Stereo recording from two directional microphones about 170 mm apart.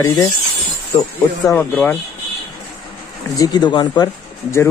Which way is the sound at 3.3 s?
25° left (ahead or behind).